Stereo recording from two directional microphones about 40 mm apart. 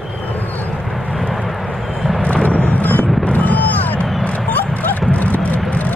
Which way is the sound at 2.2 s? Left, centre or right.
Left.